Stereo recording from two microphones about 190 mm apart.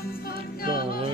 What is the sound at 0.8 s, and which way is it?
Music, 30° right (ahead or behind).